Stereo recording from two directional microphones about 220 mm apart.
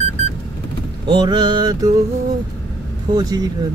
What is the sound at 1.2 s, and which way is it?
Mantra, 20° right (ahead or behind).